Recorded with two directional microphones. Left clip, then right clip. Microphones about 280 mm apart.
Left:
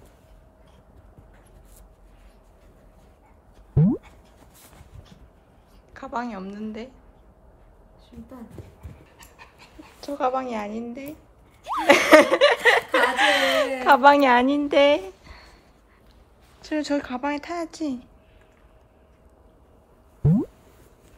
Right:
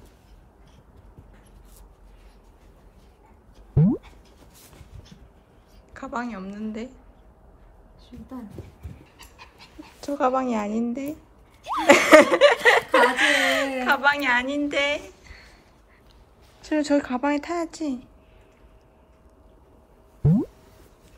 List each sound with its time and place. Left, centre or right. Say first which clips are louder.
3.7 s dog: even; centre
5.9 s speech: left 1 dB; centre
9.2 s dog: right 1 dB; centre
11.6 s speech: right 1 dB; centre
16.6 s speech: right 3 dB; centre
20.2 s a sound: even; centre